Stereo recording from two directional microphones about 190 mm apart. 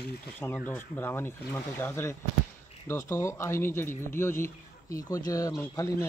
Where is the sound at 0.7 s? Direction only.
10° left (ahead or behind).